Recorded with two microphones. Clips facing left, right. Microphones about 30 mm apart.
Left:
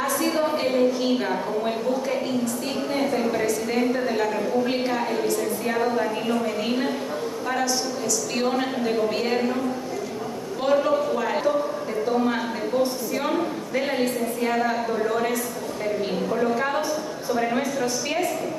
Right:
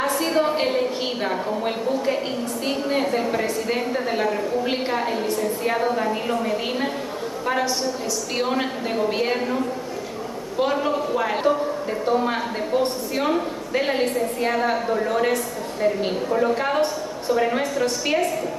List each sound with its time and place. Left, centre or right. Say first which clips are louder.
0.0 s a sound: right 2 dB; right
3.4 s a woman's voice: left 1 dB; right
6.6 s a woman's voice: even; centre
10.6 s a woman's voice: left 1 dB; centre
17.6 s a woman's voice: right 2 dB; right